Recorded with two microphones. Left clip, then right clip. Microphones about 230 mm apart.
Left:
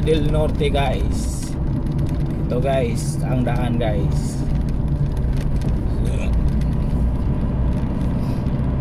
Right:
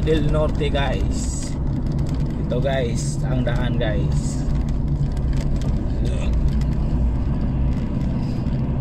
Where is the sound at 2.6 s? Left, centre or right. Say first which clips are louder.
Left 3 dB; centre.